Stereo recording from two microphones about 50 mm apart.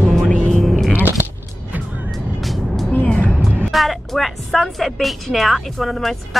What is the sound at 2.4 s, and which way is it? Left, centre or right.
Vehicle, centre.